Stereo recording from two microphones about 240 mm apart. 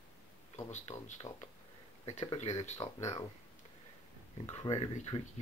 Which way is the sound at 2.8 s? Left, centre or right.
Centre.